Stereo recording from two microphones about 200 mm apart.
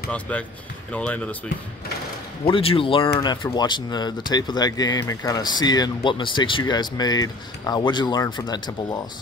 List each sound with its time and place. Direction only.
0.1 s speech: 5° left (ahead or behind)
2.4 s speech: 25° left (ahead or behind)